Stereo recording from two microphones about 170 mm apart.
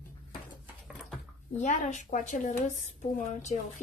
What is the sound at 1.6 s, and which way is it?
Speech, 45° left (ahead or behind).